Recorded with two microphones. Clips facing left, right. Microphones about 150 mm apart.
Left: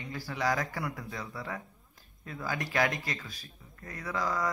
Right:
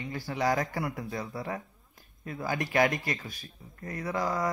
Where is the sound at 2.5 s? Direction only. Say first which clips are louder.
Right 4 dB; 50° right (ahead or behind).